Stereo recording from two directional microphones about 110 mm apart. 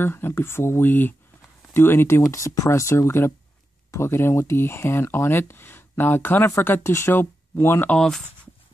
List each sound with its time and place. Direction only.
0.0 s speech: 20° left (ahead or behind)
7.9 s speech: 5° left (ahead or behind)